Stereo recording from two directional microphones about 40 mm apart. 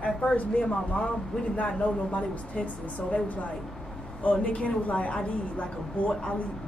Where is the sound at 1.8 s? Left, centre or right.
Left.